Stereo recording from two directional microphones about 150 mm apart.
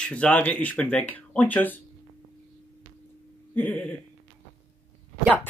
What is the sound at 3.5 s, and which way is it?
Speech, 10° left (ahead or behind).